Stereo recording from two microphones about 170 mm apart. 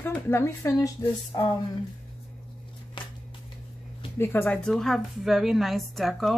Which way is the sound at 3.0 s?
30° left (ahead or behind).